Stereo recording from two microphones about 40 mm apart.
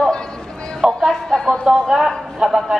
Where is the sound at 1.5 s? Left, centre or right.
Centre.